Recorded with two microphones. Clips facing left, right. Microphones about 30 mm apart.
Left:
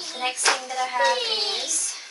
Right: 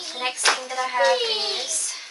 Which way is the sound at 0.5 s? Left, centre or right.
Centre.